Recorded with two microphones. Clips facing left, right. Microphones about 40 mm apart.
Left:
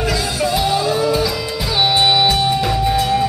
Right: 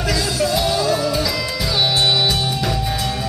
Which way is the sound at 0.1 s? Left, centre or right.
Centre.